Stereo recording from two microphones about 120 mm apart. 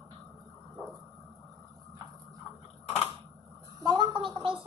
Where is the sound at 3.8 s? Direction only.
40° right (ahead or behind).